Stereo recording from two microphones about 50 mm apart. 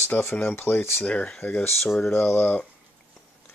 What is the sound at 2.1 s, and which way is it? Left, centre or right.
Speech, left.